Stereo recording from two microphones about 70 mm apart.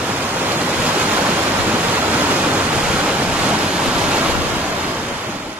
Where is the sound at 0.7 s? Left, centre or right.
Centre.